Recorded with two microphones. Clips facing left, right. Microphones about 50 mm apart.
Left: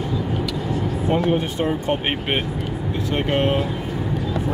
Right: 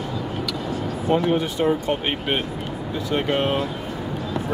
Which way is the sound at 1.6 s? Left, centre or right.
Left.